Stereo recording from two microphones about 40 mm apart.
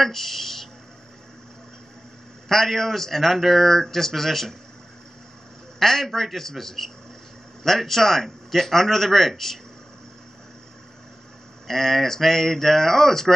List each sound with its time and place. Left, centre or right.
0.0 s speech: centre
2.4 s a man's voice: centre
5.8 s a man's voice: centre
11.6 s a man's voice: centre